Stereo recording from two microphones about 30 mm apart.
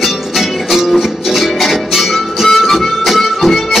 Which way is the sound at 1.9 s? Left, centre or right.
Centre.